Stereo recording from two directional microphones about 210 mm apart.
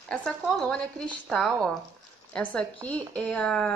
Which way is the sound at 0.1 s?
5° left (ahead or behind).